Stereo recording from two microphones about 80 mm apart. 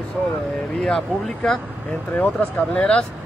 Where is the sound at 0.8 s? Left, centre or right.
Centre.